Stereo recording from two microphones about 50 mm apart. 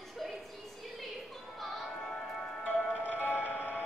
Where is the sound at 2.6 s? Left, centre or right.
Left.